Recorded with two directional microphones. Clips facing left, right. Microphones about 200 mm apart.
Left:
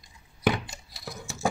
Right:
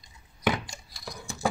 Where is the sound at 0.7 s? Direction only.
Centre (ahead or behind).